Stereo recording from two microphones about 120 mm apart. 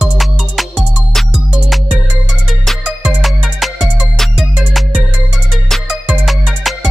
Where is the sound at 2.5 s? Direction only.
Centre (ahead or behind).